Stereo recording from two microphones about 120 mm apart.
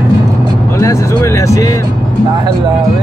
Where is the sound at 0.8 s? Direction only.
25° left (ahead or behind).